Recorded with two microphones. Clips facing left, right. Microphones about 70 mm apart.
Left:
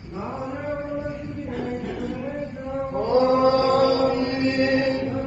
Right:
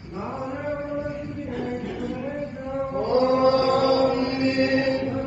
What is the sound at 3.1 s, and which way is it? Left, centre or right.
Mantra, left.